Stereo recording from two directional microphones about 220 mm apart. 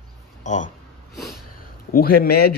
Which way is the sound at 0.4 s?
35° left (ahead or behind).